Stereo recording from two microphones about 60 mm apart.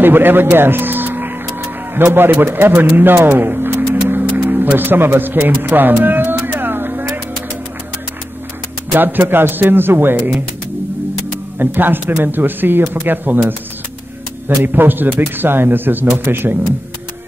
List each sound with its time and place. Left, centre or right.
0.0 s speech: right
3.0 s a sound: right
8.9 s speech: right
11.5 s speech: right
14.6 s speech: right